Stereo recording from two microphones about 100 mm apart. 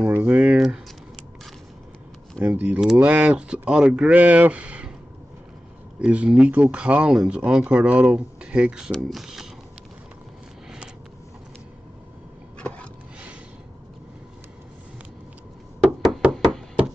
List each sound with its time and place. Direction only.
0.0 s speech: 20° right (ahead or behind)
2.4 s speech: 15° right (ahead or behind)
5.9 s speech: 10° right (ahead or behind)
12.5 s a sound: 10° left (ahead or behind)
15.8 s knock: centre (ahead or behind)